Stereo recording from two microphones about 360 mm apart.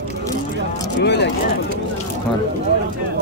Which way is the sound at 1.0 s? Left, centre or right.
Left.